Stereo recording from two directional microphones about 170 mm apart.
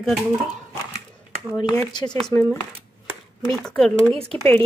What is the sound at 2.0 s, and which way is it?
Speech, 25° left (ahead or behind).